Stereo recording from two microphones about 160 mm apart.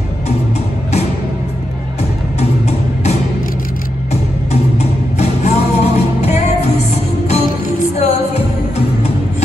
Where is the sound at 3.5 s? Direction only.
60° left (ahead or behind).